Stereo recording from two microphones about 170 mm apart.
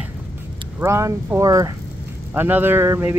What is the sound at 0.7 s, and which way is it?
Speech, 15° right (ahead or behind).